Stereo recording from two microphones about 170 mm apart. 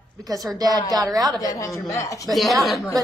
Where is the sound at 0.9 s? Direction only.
20° right (ahead or behind).